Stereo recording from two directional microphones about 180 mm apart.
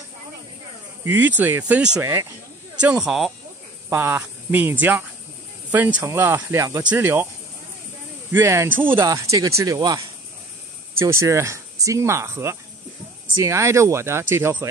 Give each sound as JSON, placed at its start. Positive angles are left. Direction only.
{"t": 1.0, "sound": "speech", "side_deg": -10}
{"t": 2.8, "sound": "speech", "side_deg": -5}
{"t": 3.9, "sound": "speech", "side_deg": -15}
{"t": 8.3, "sound": "speech", "side_deg": -15}